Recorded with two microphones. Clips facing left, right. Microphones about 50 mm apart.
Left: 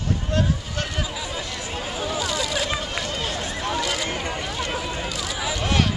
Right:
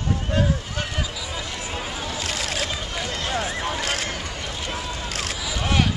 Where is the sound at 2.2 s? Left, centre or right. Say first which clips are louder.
Left 1 dB; right.